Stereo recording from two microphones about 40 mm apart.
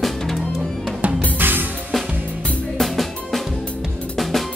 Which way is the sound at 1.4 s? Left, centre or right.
Right.